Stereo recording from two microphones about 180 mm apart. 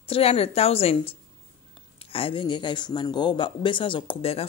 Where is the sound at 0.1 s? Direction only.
35° left (ahead or behind).